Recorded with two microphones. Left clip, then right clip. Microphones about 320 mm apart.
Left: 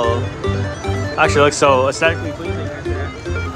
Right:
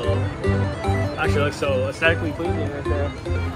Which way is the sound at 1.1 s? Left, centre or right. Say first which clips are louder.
Left 13 dB; centre.